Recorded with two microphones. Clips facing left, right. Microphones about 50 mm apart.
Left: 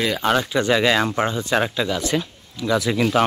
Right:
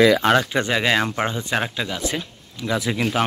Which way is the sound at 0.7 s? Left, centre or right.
Centre.